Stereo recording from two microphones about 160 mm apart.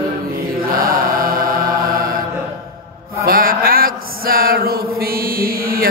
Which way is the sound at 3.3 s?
65° right (ahead or behind).